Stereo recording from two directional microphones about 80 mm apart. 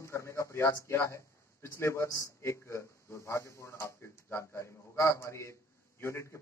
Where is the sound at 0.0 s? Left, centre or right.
Left.